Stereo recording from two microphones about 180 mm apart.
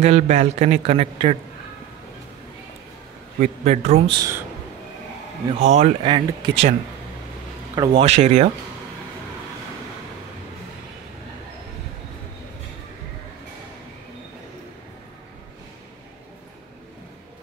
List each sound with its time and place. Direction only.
0.0 s a man's voice: 40° right (ahead or behind)
3.3 s a man's voice: 40° right (ahead or behind)
4.1 s speech: 20° right (ahead or behind)
5.6 s a man's voice: 40° right (ahead or behind)
6.0 s speech: 25° right (ahead or behind)
7.7 s a man's voice: 20° right (ahead or behind)
8.0 s a man's voice: 40° right (ahead or behind)